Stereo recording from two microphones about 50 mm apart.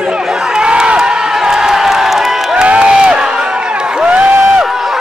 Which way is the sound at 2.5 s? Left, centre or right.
Right.